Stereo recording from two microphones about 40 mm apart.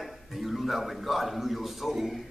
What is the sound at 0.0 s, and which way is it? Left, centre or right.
Speech, centre.